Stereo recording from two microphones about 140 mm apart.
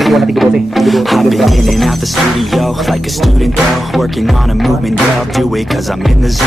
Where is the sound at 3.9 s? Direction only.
Centre (ahead or behind).